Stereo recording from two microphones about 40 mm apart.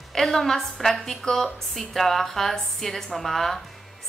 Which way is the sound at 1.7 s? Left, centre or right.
Centre.